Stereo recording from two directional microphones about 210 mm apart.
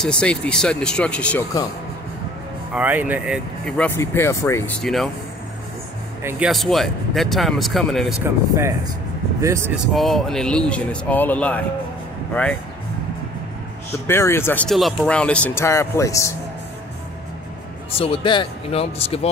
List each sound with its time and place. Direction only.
0.0 s speech: 5° left (ahead or behind)
2.7 s speech: 10° right (ahead or behind)
3.6 s speech: 5° left (ahead or behind)
4.8 s speech: centre (ahead or behind)
6.2 s speech: centre (ahead or behind)
8.5 s speech: 10° right (ahead or behind)
9.8 s speech: centre (ahead or behind)
14.0 s speech: 10° left (ahead or behind)
17.9 s speech: 25° left (ahead or behind)